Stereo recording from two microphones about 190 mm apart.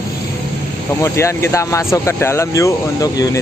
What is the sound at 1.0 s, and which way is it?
Speech, 15° left (ahead or behind).